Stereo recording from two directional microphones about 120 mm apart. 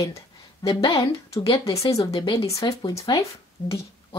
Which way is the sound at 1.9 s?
55° left (ahead or behind).